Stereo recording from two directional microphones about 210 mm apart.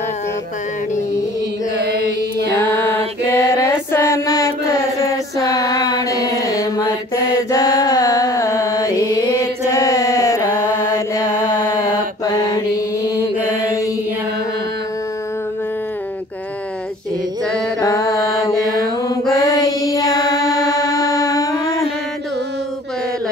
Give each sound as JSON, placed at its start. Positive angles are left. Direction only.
{"t": 2.4, "sound": "a sound", "side_deg": 10}
{"t": 3.3, "sound": "chant", "side_deg": 15}
{"t": 7.5, "sound": "carnatic music", "side_deg": 15}
{"t": 13.1, "sound": "mantra", "side_deg": 15}
{"t": 17.7, "sound": "mantra", "side_deg": 15}
{"t": 19.3, "sound": "mantra", "side_deg": 15}